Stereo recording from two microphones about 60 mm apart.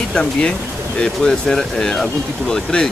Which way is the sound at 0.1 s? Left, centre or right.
Centre.